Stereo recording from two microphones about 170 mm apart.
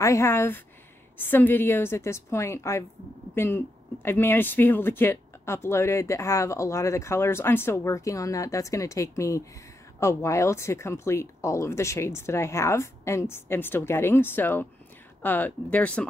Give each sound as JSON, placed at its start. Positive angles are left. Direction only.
{"t": 0.0, "sound": "speech", "side_deg": 15}